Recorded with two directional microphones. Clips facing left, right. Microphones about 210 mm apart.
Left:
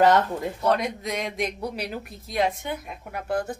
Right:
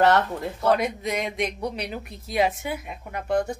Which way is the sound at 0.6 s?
5° right (ahead or behind).